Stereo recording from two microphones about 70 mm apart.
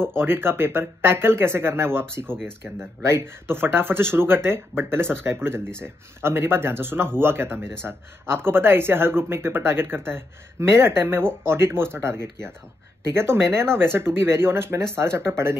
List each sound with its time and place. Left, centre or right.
0.0 s speech: right